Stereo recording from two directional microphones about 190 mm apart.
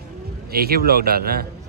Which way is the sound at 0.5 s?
55° right (ahead or behind).